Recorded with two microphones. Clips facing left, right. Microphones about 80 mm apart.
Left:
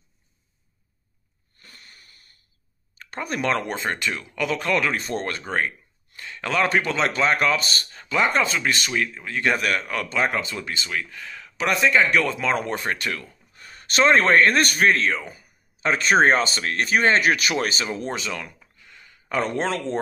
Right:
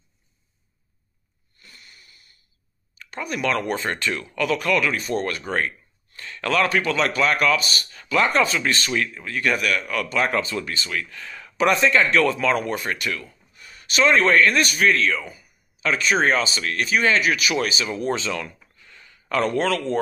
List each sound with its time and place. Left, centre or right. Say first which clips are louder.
1.6 s sniff: even; left
3.0 s speech: even; left; by 4.6 s centre
4.7 s speech: right 1 dB; left
6.1 s speech: right 2 dB; centre; by 7.9 s left
7.9 s speech: right 1 dB; left
10.1 s speech: right 2 dB; centre
11.2 s speech: right 6 dB; centre
11.9 s speech: right 1 dB; centre; by 17.8 s left
17.8 s speech: right 3 dB; left
18.1 s speech: right 3 dB; centre